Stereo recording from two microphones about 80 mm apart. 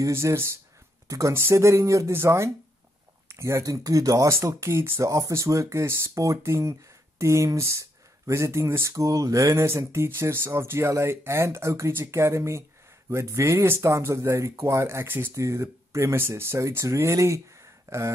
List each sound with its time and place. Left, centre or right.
0.0 s speech: right
1.3 s speech: right
15.3 s speech: right